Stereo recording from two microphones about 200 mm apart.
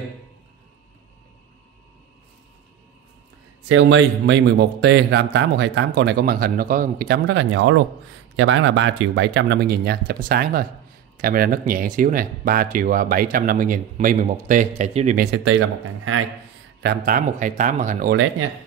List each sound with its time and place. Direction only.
3.6 s speech: 70° right (ahead or behind); by 15.2 s 35° right (ahead or behind)
16.8 s speech: 50° right (ahead or behind)